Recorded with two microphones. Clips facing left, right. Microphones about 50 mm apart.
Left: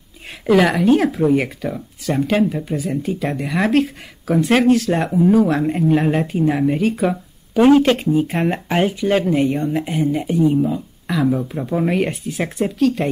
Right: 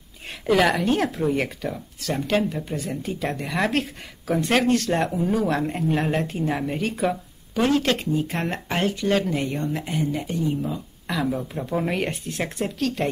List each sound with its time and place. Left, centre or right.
0.5 s speech: centre
7.5 s speech: left
11.1 s speech: centre